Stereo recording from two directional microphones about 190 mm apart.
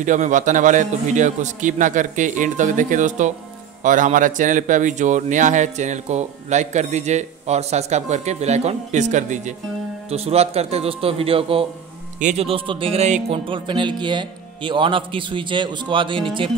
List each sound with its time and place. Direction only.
0.0 s speech: 40° right (ahead or behind)